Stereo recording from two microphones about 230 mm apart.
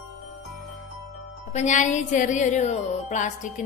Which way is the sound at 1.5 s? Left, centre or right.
Left.